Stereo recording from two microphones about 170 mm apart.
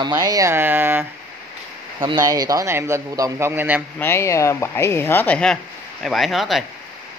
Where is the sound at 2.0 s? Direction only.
25° right (ahead or behind).